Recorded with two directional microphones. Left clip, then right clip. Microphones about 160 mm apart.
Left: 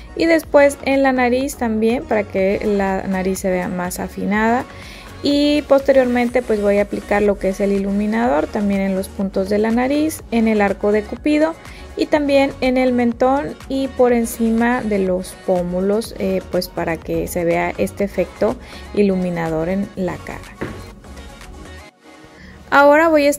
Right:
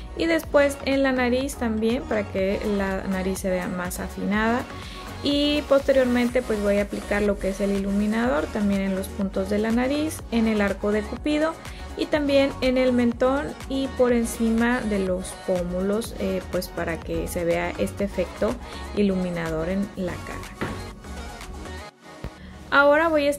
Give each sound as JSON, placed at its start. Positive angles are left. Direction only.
{"t": 0.2, "sound": "speech", "side_deg": 35}
{"t": 22.7, "sound": "speech", "side_deg": 35}